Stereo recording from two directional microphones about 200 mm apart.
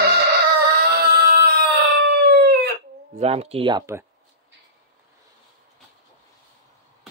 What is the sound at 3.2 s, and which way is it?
Speech, 30° right (ahead or behind).